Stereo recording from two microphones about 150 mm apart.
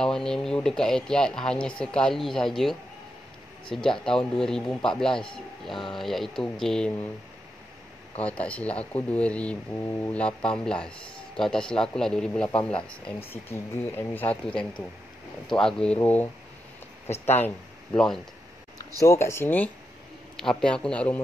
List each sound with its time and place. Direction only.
0.0 s speech: 5° left (ahead or behind)
8.2 s speech: 10° left (ahead or behind)
13.0 s speech: 15° left (ahead or behind)
17.9 s speech: 5° left (ahead or behind)
18.9 s speech: 20° left (ahead or behind)